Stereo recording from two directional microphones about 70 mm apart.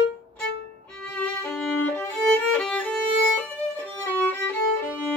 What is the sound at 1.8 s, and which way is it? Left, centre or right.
Violin, left.